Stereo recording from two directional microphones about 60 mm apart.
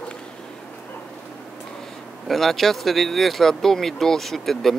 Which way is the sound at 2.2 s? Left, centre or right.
Centre.